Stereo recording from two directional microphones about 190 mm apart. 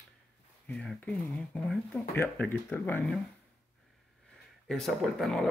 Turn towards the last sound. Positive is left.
turn(degrees=0)  # may be behind; listen again after turning